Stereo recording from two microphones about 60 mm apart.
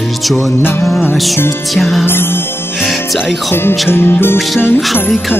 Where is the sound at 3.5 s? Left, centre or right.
Left.